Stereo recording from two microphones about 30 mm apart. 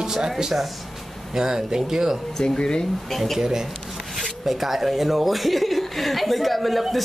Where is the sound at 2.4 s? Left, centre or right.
Left.